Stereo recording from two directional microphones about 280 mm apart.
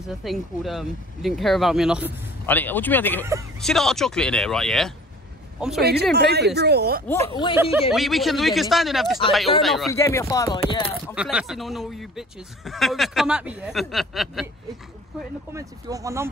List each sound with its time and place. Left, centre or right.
0.2 s speech: centre
2.4 s speech: centre
5.8 s speech: right
7.2 s speech: centre
7.9 s speech: centre
11.1 s speech: centre
15.5 s speech: centre